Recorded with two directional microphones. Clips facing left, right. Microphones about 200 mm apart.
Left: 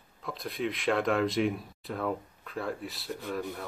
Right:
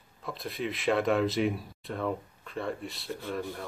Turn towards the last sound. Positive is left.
turn(degrees=0)  # may be behind; listen again after turning